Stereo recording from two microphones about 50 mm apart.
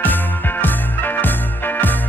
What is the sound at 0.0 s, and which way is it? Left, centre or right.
Music, left.